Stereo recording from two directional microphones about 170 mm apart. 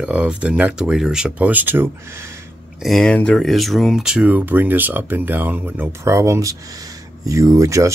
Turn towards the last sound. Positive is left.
turn(degrees=-20)  # may be behind; listen again after turning